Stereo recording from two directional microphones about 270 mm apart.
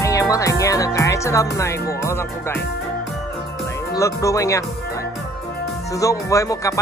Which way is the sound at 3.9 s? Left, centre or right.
Centre.